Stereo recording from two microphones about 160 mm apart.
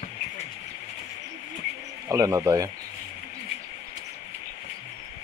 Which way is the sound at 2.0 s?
20° right (ahead or behind).